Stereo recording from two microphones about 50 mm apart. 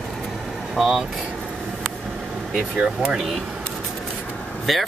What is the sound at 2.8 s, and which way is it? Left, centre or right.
Speech, right.